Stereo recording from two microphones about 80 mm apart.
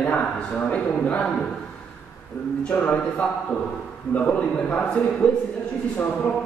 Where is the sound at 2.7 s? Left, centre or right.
Centre.